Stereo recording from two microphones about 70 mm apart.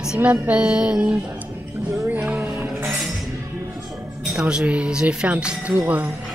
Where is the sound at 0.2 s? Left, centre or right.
Centre.